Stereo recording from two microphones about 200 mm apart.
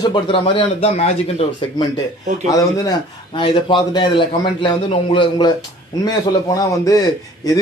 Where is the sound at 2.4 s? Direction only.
15° left (ahead or behind).